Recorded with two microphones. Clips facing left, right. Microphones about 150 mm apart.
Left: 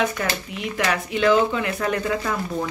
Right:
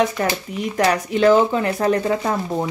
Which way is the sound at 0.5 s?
40° right (ahead or behind).